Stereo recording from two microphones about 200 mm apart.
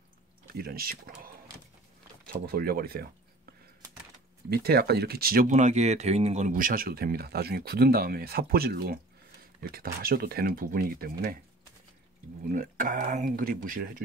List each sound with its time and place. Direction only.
0.5 s speech: 50° right (ahead or behind)
4.5 s speech: 50° right (ahead or behind)
12.4 s speech: 40° right (ahead or behind)